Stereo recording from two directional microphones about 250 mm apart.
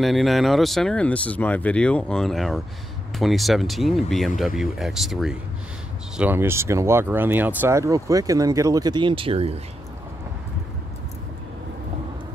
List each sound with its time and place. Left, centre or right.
0.0 s speech: centre; by 9.6 s right